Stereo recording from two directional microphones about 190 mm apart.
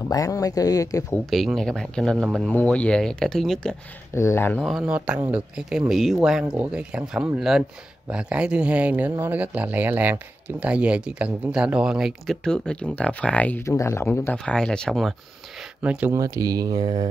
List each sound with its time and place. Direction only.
0.1 s speech: 20° left (ahead or behind)
1.3 s speech: centre (ahead or behind)
4.1 s speech: 15° left (ahead or behind)
4.6 s speech: centre (ahead or behind)
16.2 s speech: 20° right (ahead or behind)